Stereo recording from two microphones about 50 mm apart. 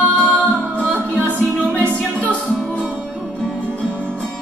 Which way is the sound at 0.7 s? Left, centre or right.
Left.